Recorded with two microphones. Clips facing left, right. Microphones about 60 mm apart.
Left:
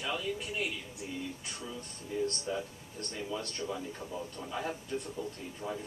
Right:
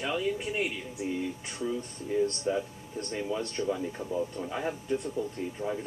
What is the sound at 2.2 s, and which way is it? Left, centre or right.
Speech, right.